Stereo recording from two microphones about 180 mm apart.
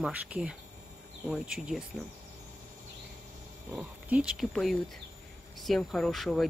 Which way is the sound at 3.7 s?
5° right (ahead or behind).